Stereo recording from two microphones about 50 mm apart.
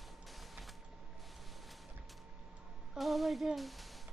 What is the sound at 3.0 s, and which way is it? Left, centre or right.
Music, centre.